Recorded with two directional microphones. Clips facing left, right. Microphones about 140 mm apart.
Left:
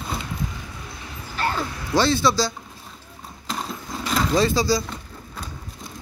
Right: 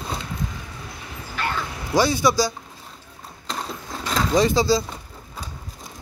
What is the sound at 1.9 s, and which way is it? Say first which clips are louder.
Speech: right 1 dB; 15° right (ahead or behind).